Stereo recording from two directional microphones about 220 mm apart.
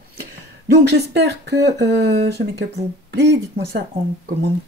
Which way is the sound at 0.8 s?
50° right (ahead or behind).